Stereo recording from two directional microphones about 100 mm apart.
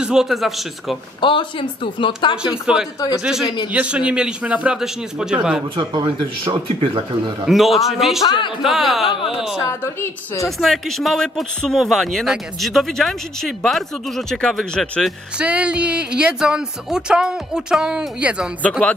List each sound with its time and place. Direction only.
0.0 s speech: 5° right (ahead or behind)
1.2 s speech: 55° left (ahead or behind)
2.3 s speech: 10° right (ahead or behind)
5.8 s speech: 55° right (ahead or behind)
7.4 s speech: centre (ahead or behind)
8.2 s speech: 50° left (ahead or behind)
8.6 s speech: centre (ahead or behind)
9.6 s a woman's voice: 30° left (ahead or behind)
10.4 s speech: centre (ahead or behind)
15.3 s speech: 10° right (ahead or behind)